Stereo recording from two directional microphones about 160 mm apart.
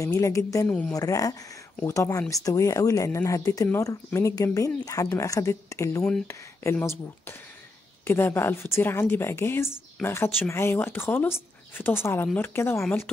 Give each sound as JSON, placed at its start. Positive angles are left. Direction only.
{"t": 0.0, "sound": "speech", "side_deg": 20}
{"t": 6.0, "sound": "speech", "side_deg": 10}